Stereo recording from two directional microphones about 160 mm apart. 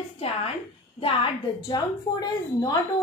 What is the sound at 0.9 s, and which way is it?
A woman's voice, 35° left (ahead or behind).